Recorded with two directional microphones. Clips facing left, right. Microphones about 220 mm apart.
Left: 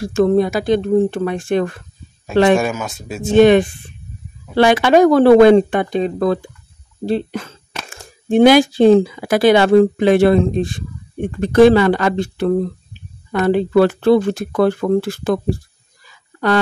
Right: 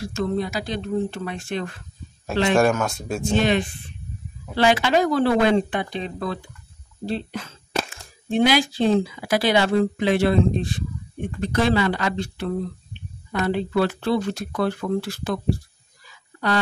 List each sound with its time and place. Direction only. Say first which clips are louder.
0.0 s speech: left 11 dB; 55° left (ahead or behind)
2.5 s speech: left 2 dB; centre (ahead or behind)
3.3 s speech: left 12 dB; 55° left (ahead or behind)